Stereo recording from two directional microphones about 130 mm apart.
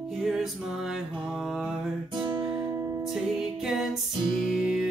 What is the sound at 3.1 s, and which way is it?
Music, 5° right (ahead or behind).